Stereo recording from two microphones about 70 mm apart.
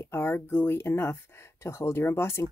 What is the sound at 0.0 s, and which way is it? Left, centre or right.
Speech, left.